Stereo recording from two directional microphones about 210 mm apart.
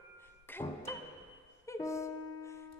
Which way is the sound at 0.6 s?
15° left (ahead or behind).